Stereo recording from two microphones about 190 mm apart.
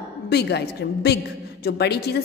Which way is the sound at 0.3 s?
60° left (ahead or behind).